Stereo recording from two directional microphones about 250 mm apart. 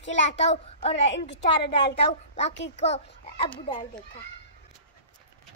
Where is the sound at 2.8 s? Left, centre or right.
Left.